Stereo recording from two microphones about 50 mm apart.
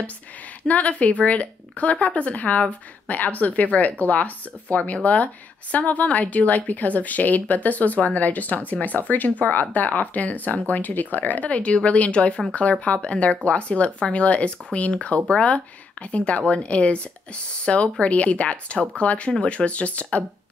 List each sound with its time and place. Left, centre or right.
0.7 s speech: left